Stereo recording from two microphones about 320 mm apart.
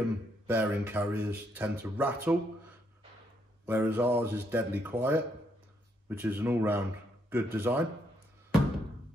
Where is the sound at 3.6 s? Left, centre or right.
Centre.